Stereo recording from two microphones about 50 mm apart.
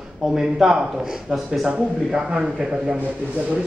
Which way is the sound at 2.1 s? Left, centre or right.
Right.